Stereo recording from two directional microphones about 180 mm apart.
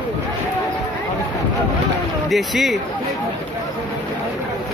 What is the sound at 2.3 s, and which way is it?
Speech, centre (ahead or behind).